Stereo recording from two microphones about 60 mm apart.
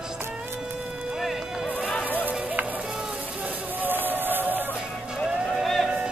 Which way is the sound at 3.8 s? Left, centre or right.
Right.